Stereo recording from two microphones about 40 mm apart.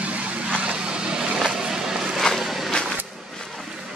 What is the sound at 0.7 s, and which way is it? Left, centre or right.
Vehicle, right.